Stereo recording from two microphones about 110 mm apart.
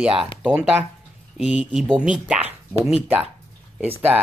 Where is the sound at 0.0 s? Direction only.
5° right (ahead or behind).